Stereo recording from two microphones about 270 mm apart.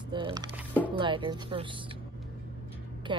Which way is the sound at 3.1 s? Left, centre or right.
Centre.